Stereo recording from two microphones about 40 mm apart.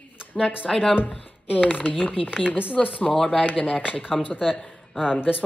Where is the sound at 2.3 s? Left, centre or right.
Right.